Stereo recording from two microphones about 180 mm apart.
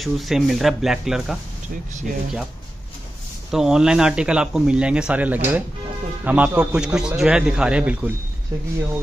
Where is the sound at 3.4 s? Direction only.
5° right (ahead or behind).